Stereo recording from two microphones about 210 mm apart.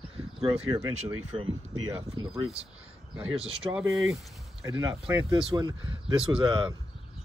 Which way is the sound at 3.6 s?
15° right (ahead or behind).